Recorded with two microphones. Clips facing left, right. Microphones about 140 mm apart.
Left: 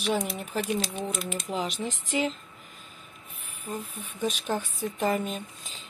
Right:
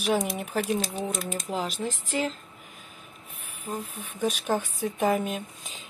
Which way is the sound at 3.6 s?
10° right (ahead or behind).